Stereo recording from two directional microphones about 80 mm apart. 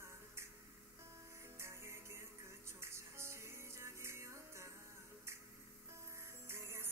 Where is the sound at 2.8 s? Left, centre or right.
Right.